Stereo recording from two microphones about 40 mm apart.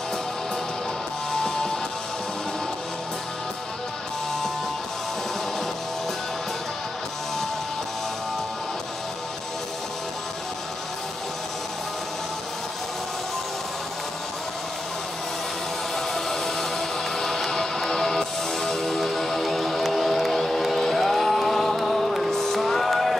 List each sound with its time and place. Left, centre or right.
1.4 s music: centre
16.3 s music: centre